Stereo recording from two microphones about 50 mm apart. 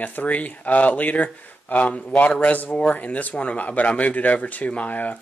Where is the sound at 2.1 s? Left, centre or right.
Left.